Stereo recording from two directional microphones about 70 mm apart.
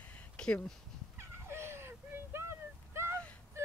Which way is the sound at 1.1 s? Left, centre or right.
Right.